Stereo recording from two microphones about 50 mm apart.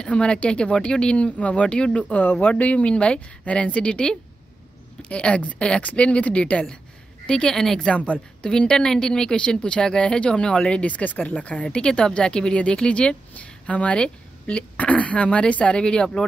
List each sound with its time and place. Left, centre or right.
0.0 s a woman's voice: centre
5.0 s a woman's voice: left
7.5 s a woman's voice: centre
7.8 s a woman's voice: left